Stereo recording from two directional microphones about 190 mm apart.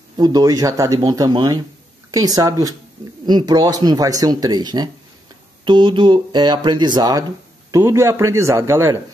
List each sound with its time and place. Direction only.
0.2 s a man's voice: 20° right (ahead or behind)